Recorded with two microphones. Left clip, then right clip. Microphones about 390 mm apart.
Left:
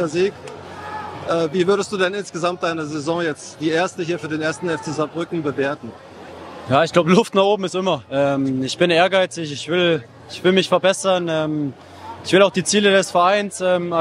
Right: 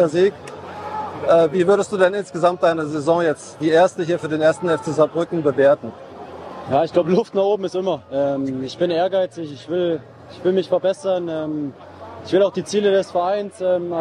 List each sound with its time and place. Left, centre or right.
0.0 s a man's voice: centre
1.3 s a man's voice: centre
6.7 s speech: left